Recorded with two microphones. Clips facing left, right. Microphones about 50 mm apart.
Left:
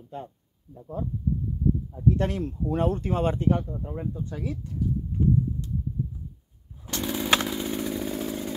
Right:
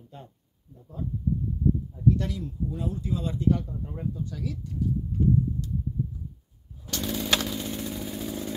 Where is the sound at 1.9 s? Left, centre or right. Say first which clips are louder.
Left 1 dB; left.